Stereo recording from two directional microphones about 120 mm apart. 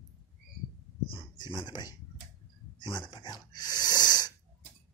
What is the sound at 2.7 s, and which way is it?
Gasp, 40° left (ahead or behind).